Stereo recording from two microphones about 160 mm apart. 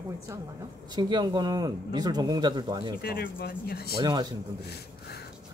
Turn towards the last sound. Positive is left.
turn(degrees=-25)  # may be behind; listen again after turning